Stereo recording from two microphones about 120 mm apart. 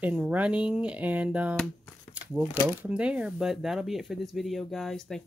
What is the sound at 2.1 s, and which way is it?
Shuffling cards, 15° right (ahead or behind).